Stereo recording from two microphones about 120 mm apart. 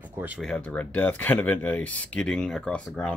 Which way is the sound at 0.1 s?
15° right (ahead or behind).